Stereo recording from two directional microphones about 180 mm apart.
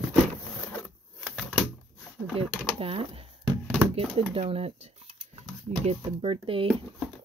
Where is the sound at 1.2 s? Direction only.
5° right (ahead or behind).